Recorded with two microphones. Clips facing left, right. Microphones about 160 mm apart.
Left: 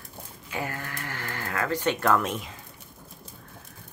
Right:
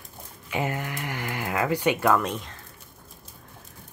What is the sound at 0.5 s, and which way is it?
Speech, 20° right (ahead or behind).